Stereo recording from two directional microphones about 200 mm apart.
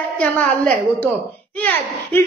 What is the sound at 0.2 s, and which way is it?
A man's voice, 5° left (ahead or behind).